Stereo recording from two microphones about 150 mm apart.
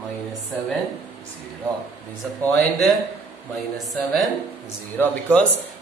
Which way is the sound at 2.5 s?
Centre (ahead or behind).